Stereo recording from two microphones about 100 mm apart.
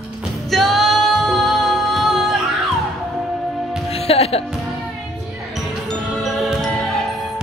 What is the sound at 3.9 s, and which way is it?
Music, 80° left.